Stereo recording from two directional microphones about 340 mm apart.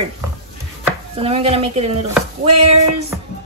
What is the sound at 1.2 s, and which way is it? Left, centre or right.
Speech, centre.